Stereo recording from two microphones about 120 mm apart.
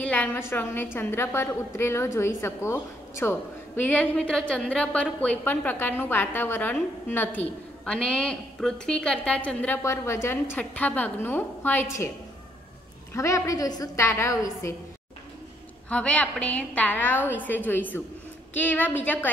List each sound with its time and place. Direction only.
0.0 s a woman's voice: 10° left (ahead or behind)
9.8 s a woman's voice: 25° left (ahead or behind)
13.1 s a woman's voice: 25° left (ahead or behind)
15.9 s a woman's voice: 10° left (ahead or behind)